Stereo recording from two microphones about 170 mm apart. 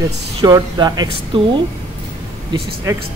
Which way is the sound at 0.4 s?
20° right (ahead or behind).